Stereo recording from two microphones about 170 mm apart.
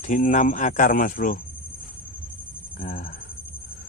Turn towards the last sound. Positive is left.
turn(degrees=50)  # may be behind; listen again after turning